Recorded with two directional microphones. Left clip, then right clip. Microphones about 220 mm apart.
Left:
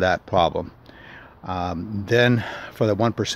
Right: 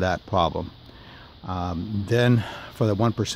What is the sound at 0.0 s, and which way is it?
Speech, centre (ahead or behind).